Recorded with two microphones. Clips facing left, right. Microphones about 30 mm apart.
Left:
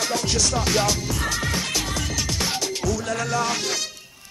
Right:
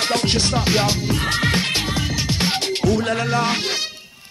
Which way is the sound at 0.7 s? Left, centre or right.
Right.